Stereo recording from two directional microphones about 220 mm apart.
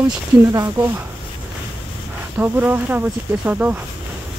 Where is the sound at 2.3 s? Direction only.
10° right (ahead or behind).